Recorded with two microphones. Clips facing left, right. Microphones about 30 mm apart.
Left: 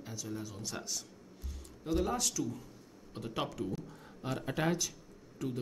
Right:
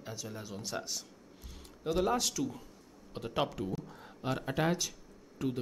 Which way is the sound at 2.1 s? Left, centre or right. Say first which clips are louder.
Right 3 dB; centre.